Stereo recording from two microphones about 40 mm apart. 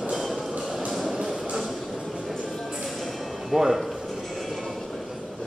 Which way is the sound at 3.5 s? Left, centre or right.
Centre.